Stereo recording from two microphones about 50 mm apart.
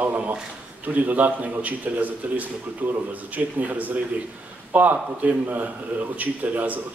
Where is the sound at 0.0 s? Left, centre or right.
Right.